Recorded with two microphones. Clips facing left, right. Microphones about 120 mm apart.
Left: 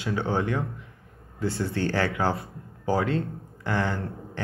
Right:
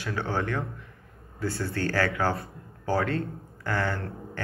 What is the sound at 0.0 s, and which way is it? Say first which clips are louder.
A man's voice: left 3 dB; 20° left (ahead or behind).